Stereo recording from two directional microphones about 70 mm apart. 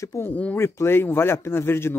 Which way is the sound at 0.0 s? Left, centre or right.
Left.